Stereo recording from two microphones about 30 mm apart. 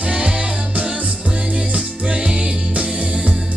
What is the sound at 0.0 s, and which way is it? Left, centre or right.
Music, right.